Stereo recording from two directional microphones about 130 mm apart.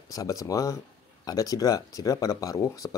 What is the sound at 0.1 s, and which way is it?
Speech, 25° left (ahead or behind).